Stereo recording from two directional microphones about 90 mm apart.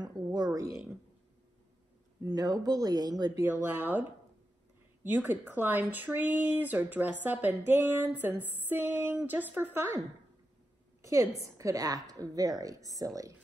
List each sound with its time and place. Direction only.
0.0 s speech: 45° right (ahead or behind)
2.2 s speech: 45° right (ahead or behind)
3.5 s speech: 20° right (ahead or behind)
5.0 s speech: 25° right (ahead or behind)
11.0 s a woman's voice: 35° right (ahead or behind)